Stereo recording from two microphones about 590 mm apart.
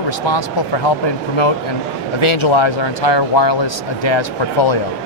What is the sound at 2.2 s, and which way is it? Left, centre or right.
Speech, left.